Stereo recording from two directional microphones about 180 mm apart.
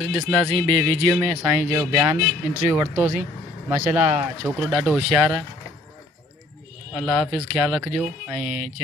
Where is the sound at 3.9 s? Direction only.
10° right (ahead or behind).